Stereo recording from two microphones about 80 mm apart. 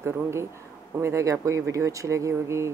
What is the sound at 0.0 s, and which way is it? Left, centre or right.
Speech, right.